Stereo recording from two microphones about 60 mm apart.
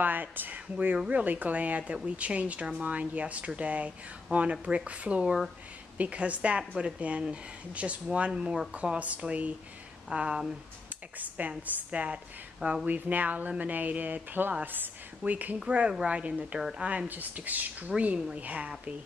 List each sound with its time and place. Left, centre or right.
0.0 s a woman's voice: right
15.9 s a woman's voice: centre
17.1 s speech: right